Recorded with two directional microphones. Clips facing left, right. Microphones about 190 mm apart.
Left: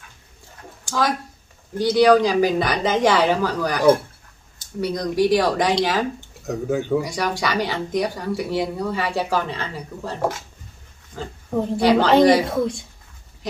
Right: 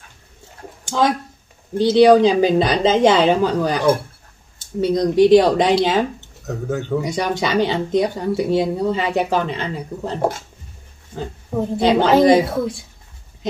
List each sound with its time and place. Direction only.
0.8 s speech: 25° right (ahead or behind)
6.4 s speech: 10° left (ahead or behind)
7.0 s speech: 20° right (ahead or behind)
12.4 s speech: 5° right (ahead or behind)